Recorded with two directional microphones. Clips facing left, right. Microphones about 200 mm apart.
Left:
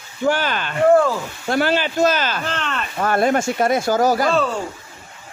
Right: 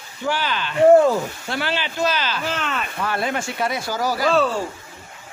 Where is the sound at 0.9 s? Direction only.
20° right (ahead or behind).